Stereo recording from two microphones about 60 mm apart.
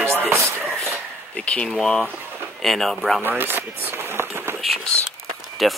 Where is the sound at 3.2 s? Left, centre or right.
Right.